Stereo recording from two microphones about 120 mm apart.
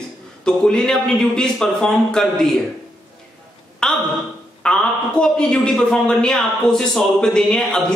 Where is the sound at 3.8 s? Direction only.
5° left (ahead or behind).